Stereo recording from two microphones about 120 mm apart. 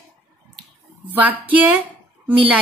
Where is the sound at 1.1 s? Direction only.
15° right (ahead or behind).